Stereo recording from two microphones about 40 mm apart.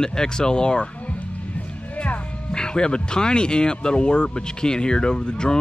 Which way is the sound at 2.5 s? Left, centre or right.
Left.